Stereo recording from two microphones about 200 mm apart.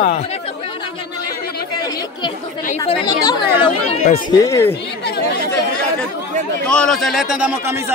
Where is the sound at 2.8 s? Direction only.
25° left (ahead or behind).